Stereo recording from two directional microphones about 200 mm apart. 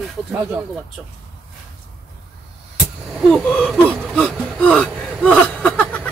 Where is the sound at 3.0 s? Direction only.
Centre (ahead or behind).